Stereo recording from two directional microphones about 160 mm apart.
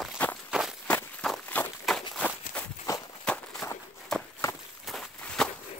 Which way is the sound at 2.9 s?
20° left (ahead or behind).